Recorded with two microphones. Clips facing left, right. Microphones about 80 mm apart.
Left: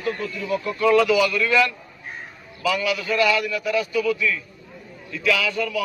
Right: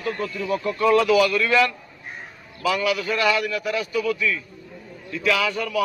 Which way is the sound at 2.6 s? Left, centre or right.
Right.